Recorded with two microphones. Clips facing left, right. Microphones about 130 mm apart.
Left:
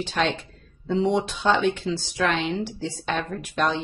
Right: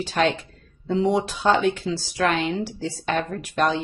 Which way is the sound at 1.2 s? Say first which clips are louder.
Right 2 dB; 45° right (ahead or behind).